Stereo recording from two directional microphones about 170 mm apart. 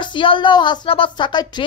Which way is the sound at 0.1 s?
30° left (ahead or behind).